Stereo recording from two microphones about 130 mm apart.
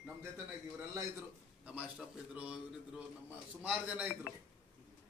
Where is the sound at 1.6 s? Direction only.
10° right (ahead or behind).